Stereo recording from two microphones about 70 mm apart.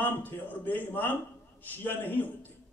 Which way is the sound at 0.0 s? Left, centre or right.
Left.